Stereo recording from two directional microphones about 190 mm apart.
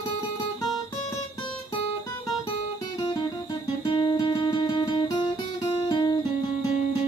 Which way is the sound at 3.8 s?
25° left (ahead or behind).